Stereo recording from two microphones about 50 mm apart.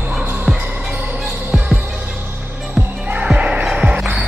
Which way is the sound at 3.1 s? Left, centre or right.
Right.